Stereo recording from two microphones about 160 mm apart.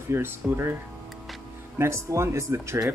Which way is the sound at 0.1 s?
15° right (ahead or behind).